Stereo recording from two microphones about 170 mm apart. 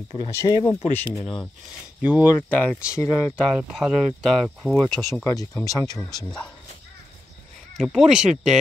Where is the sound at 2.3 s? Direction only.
10° left (ahead or behind).